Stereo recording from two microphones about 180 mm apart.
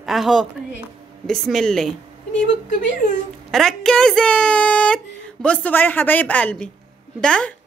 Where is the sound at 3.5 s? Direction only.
Centre (ahead or behind).